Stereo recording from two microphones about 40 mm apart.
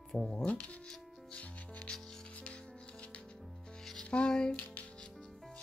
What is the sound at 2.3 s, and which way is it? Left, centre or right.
Music, left.